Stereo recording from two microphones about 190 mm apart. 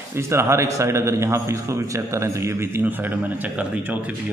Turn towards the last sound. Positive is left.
turn(degrees=-10)  # may be behind; listen again after turning